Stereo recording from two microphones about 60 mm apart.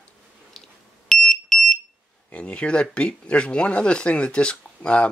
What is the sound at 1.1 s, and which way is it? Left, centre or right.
Alarm, centre.